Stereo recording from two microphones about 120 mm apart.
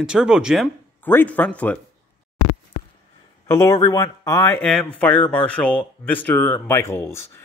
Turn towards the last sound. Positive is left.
turn(degrees=20)  # may be behind; listen again after turning